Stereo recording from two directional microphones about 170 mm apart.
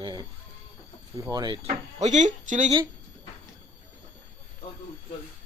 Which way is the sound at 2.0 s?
45° right (ahead or behind).